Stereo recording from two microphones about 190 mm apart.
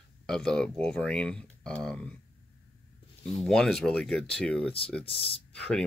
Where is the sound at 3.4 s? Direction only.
Centre (ahead or behind).